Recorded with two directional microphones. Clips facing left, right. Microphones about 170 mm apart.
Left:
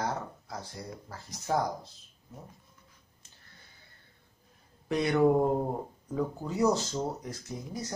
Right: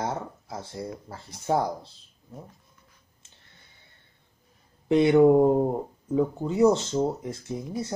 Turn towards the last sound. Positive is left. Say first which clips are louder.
# right 6 dB
turn(degrees=-25)  # may be behind; listen again after turning